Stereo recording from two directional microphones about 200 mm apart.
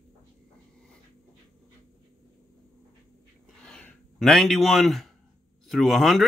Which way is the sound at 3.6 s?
5° left (ahead or behind).